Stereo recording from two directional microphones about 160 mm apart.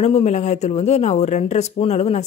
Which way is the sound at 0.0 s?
40° left (ahead or behind).